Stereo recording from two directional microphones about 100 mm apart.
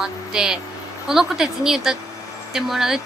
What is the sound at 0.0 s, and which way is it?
A woman's voice, 5° right (ahead or behind).